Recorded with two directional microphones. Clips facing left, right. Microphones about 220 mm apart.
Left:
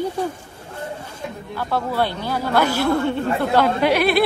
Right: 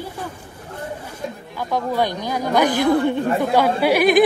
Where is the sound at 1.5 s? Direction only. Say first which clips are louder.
Right 1 dB; 15° right (ahead or behind).